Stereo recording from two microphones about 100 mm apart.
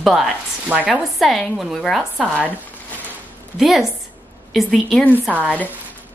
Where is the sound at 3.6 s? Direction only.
Centre (ahead or behind).